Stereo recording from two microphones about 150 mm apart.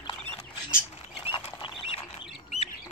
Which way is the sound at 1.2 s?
35° left (ahead or behind).